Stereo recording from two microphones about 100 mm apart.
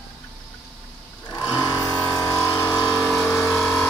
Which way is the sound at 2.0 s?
35° left (ahead or behind).